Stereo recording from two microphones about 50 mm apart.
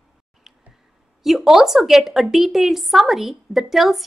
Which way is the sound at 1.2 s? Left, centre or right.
Centre.